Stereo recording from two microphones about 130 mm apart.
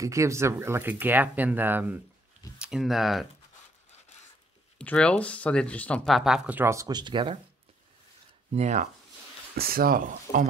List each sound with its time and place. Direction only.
0.0 s speech: 25° right (ahead or behind)
2.6 s speech: 5° right (ahead or behind)
4.7 s speech: 10° left (ahead or behind)
6.0 s speech: centre (ahead or behind); by 7.3 s 35° right (ahead or behind)
8.5 s speech: 60° right (ahead or behind)
9.8 s speech: 90° right